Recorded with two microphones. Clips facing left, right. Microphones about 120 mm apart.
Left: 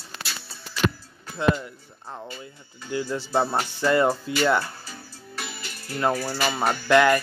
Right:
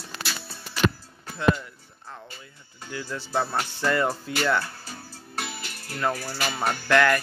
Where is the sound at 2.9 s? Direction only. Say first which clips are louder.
Left 4 dB; 20° left (ahead or behind).